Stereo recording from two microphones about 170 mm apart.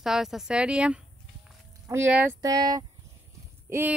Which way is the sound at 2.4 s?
20° right (ahead or behind).